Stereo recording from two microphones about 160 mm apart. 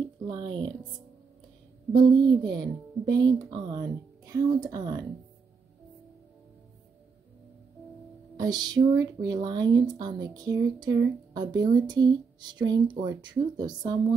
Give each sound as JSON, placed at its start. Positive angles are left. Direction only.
{"t": 0.3, "sound": "speech", "side_deg": -30}
{"t": 2.0, "sound": "speech", "side_deg": -30}
{"t": 8.4, "sound": "speech", "side_deg": -25}